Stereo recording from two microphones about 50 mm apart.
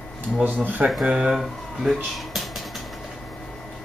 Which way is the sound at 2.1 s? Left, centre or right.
Centre.